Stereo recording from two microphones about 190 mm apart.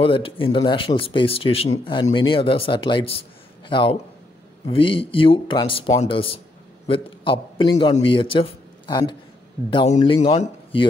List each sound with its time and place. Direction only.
0.0 s a man's voice: 30° left (ahead or behind)